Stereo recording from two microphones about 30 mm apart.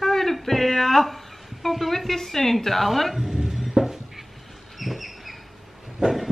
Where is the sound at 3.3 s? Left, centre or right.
Centre.